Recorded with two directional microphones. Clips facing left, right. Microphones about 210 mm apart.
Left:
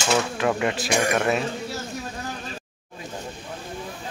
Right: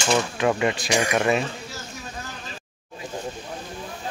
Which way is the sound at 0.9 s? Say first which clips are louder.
Left 1 dB; 55° left (ahead or behind).